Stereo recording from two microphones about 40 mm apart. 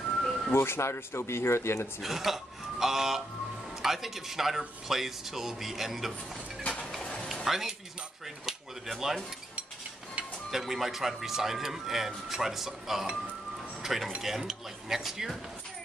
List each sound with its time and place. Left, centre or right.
0.2 s a sound: centre
0.5 s speech: left
2.0 s speech: centre
7.4 s speech: centre
8.5 s a sound: centre
10.5 s speech: centre